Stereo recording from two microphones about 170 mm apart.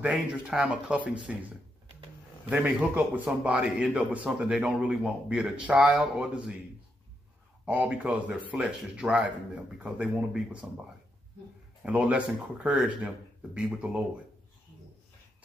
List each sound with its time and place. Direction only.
0.0 s speech: 5° right (ahead or behind)
2.5 s a man's voice: 5° right (ahead or behind)
7.6 s speech: 10° right (ahead or behind)
11.8 s a man's voice: 5° right (ahead or behind)